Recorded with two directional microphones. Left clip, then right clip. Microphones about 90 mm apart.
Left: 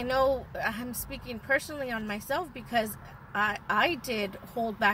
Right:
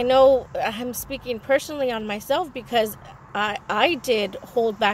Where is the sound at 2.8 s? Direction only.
20° right (ahead or behind).